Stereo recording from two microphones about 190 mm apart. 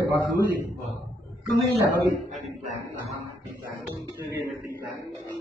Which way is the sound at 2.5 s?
35° right (ahead or behind).